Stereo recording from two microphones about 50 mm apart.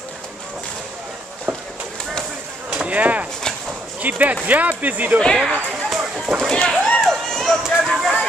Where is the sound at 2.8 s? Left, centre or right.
Right.